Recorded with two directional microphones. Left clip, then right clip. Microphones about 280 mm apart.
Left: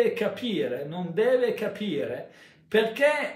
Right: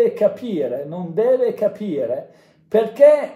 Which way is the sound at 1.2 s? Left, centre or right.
Centre.